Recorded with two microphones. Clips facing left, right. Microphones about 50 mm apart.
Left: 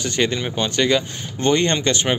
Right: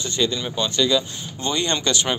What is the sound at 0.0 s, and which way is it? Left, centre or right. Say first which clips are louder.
Speech: left 2 dB; left.